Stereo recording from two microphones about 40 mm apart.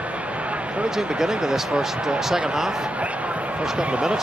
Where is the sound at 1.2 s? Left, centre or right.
Centre.